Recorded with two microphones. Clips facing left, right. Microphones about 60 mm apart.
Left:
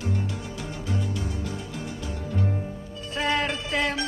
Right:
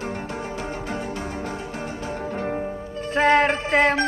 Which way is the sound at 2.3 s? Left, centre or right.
Right.